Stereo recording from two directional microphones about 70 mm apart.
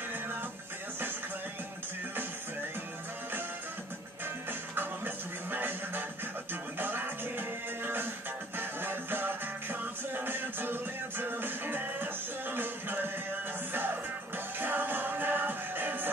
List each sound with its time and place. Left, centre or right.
4.5 s music: right
14.6 s music: right